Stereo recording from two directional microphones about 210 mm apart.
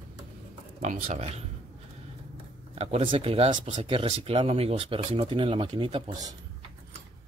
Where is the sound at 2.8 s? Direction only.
30° right (ahead or behind).